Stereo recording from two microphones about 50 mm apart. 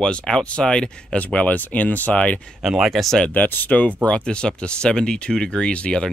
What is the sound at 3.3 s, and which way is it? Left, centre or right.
Speech, left.